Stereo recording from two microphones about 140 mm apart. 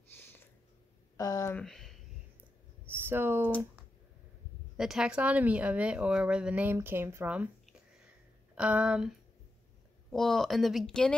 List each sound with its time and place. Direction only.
0.1 s a sound: 15° left (ahead or behind)
1.6 s speech: 5° left (ahead or behind)
2.8 s a sound: 15° right (ahead or behind)
4.7 s speech: 5° right (ahead or behind)
8.5 s speech: 10° right (ahead or behind)
10.1 s speech: 5° left (ahead or behind)